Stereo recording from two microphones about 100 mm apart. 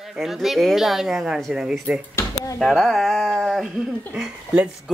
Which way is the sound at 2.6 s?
Centre (ahead or behind).